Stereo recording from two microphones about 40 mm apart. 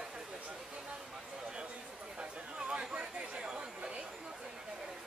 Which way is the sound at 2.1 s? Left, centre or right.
Right.